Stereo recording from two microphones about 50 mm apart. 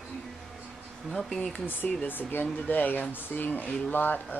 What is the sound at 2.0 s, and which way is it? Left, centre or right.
Speech, left.